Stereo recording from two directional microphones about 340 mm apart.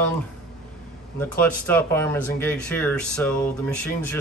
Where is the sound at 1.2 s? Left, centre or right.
Centre.